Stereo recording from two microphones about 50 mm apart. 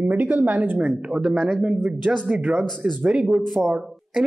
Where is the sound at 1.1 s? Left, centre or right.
Centre.